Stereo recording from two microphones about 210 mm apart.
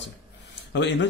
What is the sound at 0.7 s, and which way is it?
Speech, 60° left (ahead or behind).